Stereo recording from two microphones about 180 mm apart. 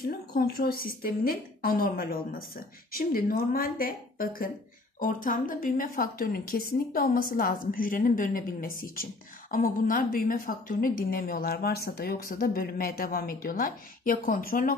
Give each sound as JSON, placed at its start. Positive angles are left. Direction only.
{"t": 0.0, "sound": "a woman's voice", "side_deg": 60}